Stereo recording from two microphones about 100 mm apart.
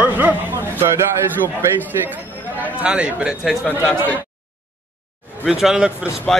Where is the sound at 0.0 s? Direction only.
15° right (ahead or behind).